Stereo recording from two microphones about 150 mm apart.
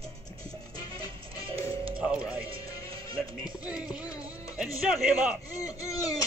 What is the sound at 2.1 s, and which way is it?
Music, 5° right (ahead or behind).